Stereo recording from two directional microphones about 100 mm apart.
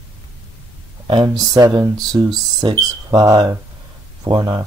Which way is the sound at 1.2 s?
40° right (ahead or behind).